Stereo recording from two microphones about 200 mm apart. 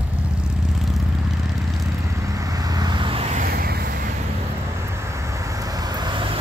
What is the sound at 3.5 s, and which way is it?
Vehicle, 50° right (ahead or behind).